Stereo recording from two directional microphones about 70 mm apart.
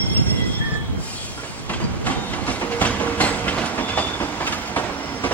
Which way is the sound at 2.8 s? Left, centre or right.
Left.